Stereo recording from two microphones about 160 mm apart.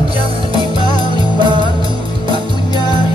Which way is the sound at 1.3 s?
30° right (ahead or behind).